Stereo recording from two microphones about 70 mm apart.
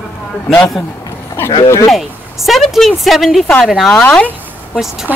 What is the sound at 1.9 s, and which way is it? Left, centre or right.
Speech, centre.